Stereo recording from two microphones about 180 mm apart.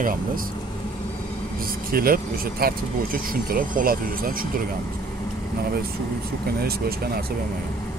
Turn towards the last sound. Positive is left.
turn(degrees=-60)  # may be behind; listen again after turning